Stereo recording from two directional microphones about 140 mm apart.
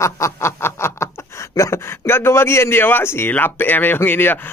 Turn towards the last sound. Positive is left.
turn(degrees=15)  # may be behind; listen again after turning